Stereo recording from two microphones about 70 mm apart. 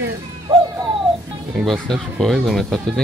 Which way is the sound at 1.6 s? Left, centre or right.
Centre.